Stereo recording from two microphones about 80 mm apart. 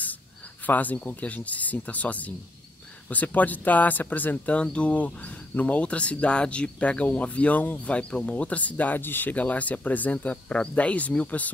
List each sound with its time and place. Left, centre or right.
0.7 s speech: left